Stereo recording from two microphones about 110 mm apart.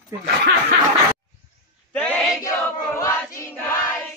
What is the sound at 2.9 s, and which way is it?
Choir, 30° left (ahead or behind).